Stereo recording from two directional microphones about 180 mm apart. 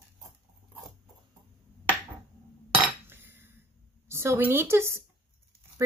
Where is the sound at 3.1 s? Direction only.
10° right (ahead or behind).